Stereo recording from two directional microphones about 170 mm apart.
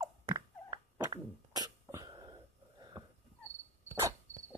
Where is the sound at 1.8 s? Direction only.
20° right (ahead or behind).